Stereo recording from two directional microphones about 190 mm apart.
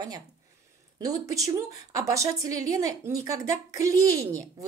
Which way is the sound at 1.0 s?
15° right (ahead or behind).